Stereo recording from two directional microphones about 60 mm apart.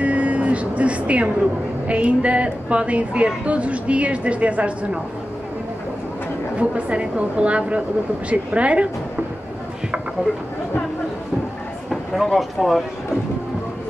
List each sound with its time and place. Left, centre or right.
0.0 s vehicle: right
1.9 s a woman's voice: right
6.5 s a woman's voice: right
11.9 s speech: centre